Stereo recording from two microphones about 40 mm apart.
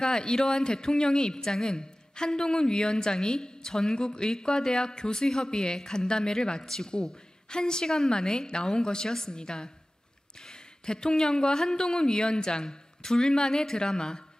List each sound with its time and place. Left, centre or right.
0.0 s a woman's voice: centre
10.9 s a woman's voice: centre